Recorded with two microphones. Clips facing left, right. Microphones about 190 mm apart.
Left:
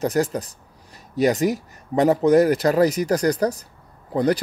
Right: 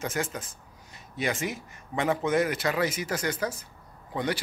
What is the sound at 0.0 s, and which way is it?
Speech, 35° left (ahead or behind).